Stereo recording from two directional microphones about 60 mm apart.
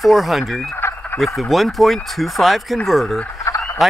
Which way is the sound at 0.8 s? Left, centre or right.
Left.